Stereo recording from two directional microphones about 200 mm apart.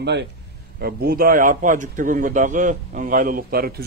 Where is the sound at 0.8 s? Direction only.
50° right (ahead or behind).